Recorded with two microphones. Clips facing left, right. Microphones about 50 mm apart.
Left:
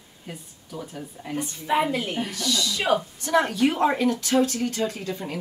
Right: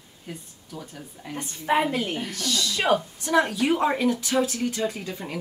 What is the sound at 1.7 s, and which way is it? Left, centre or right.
Speech, right.